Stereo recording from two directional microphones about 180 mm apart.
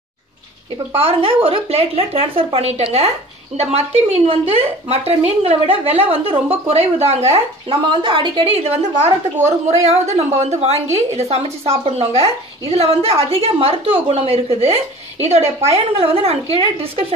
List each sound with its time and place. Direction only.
0.9 s a woman's voice: 30° right (ahead or behind)